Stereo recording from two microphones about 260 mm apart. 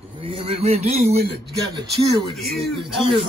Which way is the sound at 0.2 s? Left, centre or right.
Right.